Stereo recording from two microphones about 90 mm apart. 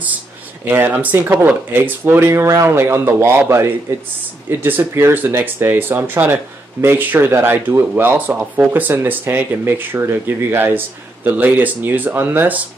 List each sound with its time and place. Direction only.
0.7 s speech: 25° right (ahead or behind)